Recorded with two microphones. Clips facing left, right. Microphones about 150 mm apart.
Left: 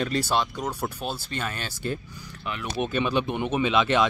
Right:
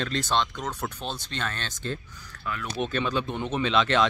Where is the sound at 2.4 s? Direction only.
20° left (ahead or behind).